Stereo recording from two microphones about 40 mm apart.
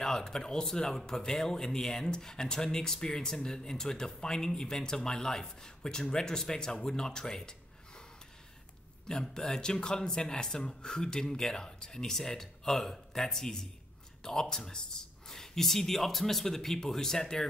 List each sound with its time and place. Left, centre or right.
0.0 s speech: centre
7.1 s a sound: centre
9.0 s speech: centre